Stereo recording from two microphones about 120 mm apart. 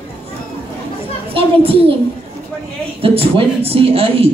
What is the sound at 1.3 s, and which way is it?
Speech, 50° right (ahead or behind).